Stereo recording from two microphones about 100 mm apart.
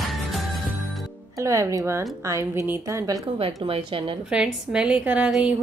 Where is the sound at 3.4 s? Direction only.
70° right (ahead or behind).